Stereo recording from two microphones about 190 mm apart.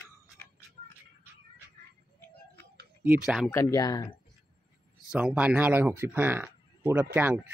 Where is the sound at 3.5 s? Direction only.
20° left (ahead or behind).